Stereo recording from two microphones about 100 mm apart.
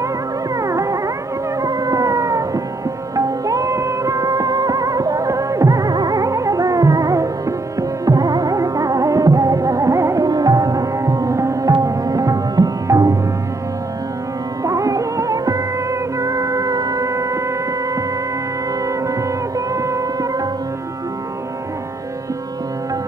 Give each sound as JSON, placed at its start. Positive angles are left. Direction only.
{"t": 0.6, "sound": "music", "side_deg": -35}
{"t": 1.6, "sound": "howl", "side_deg": -35}
{"t": 3.2, "sound": "music", "side_deg": -35}
{"t": 14.6, "sound": "music", "side_deg": -35}
{"t": 19.7, "sound": "music", "side_deg": -30}